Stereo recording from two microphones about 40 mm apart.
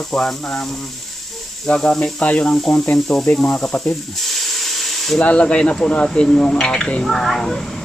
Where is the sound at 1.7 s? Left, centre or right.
Left.